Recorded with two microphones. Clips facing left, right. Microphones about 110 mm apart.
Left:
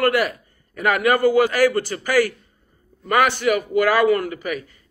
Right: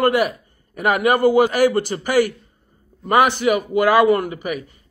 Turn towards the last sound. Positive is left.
turn(degrees=-20)  # may be behind; listen again after turning